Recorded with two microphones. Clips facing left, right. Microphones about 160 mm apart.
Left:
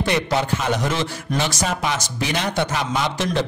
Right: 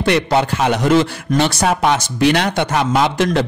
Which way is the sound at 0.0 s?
65° right (ahead or behind).